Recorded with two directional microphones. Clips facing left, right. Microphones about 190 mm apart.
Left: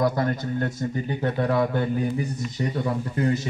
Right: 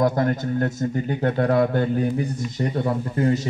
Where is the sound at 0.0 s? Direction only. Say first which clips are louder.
Right 3 dB; 45° right (ahead or behind).